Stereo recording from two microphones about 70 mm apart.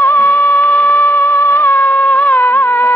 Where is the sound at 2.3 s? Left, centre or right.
Left.